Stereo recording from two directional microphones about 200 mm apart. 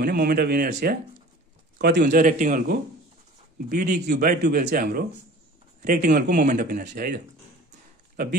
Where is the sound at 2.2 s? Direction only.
40° right (ahead or behind).